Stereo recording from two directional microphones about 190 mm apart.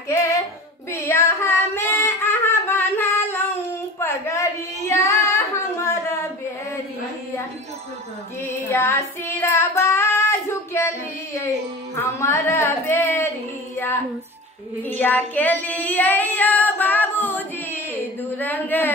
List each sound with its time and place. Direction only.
0.1 s child singing: 15° left (ahead or behind)
0.9 s female singing: 15° left (ahead or behind)
4.0 s child singing: 15° left (ahead or behind)
8.4 s child singing: 10° left (ahead or behind)
11.4 s music: 15° left (ahead or behind)
14.8 s female singing: 10° left (ahead or behind)
18.4 s a man's voice: 10° left (ahead or behind)